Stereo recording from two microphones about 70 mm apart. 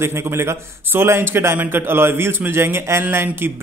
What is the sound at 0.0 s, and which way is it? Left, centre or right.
A man's voice, right.